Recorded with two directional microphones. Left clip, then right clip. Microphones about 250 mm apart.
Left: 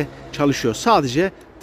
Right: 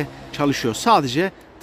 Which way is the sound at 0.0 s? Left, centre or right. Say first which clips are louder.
Left 2 dB; centre.